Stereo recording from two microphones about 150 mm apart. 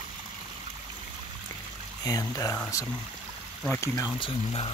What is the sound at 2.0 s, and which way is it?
Speech, 25° left (ahead or behind).